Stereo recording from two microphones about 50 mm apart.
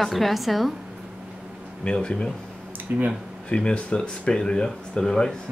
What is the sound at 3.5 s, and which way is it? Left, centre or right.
Speech, left.